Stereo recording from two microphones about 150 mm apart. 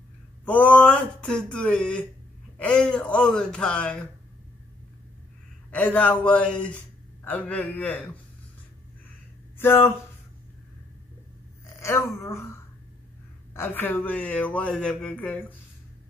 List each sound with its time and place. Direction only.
0.5 s speech: 10° left (ahead or behind)
5.7 s speech: 10° left (ahead or behind)
9.6 s speech: 15° left (ahead or behind)
11.8 s speech: 15° left (ahead or behind)